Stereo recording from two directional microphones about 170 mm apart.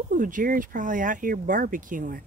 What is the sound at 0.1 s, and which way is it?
Speech, 50° right (ahead or behind).